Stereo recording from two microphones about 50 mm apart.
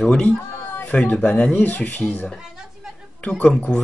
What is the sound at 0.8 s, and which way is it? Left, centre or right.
Speech, left.